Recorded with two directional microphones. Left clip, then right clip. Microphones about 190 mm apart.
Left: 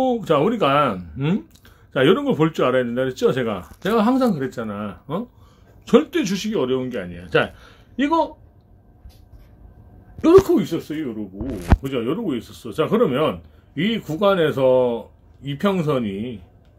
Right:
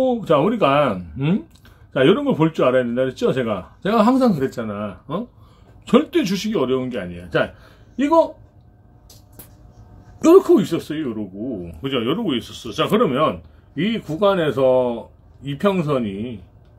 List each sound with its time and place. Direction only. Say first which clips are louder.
0.0 s speech: right 1 dB; 5° left (ahead or behind)
4.7 s a man's voice: right 1 dB; 15° left (ahead or behind)
7.3 s speech: left 1 dB; 10° left (ahead or behind)
10.2 s a man's voice: right 1 dB; centre (ahead or behind)